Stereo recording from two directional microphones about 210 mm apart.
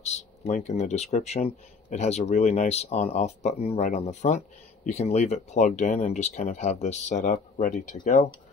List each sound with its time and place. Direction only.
0.5 s speech: 35° left (ahead or behind)